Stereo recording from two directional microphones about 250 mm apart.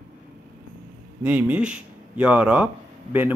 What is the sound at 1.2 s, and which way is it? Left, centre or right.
Speech, centre.